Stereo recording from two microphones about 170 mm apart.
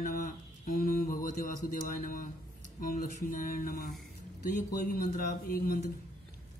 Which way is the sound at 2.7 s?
55° left (ahead or behind).